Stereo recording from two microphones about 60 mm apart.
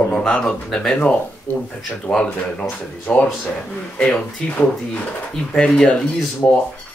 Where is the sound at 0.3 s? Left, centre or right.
Centre.